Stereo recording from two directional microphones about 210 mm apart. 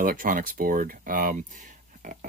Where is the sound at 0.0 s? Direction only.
40° right (ahead or behind).